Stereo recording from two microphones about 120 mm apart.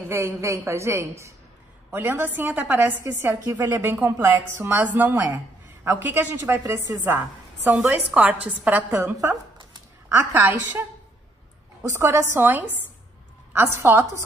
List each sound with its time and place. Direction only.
0.1 s a woman's voice: 20° right (ahead or behind)
7.7 s a woman's voice: 10° right (ahead or behind)
11.9 s a woman's voice: 20° right (ahead or behind)